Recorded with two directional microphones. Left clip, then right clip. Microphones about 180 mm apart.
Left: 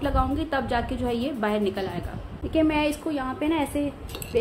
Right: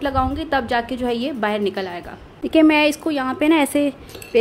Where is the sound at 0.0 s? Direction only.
40° right (ahead or behind).